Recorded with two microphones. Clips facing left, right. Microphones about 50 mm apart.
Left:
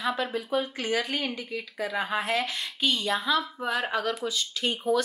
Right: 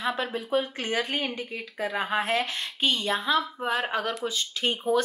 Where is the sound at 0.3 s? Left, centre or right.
Right.